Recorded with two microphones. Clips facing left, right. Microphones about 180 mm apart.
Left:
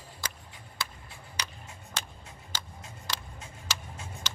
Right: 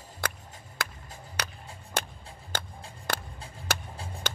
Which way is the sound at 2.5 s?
55° right (ahead or behind).